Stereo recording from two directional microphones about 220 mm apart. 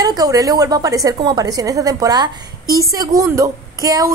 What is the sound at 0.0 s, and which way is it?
A woman's voice, 15° right (ahead or behind).